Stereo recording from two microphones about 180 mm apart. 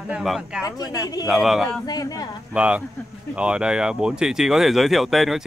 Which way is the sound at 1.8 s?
20° left (ahead or behind).